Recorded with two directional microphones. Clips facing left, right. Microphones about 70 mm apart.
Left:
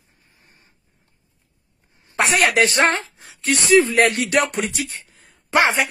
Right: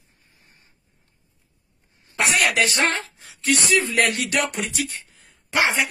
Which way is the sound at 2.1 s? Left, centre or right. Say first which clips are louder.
Left 3 dB; left.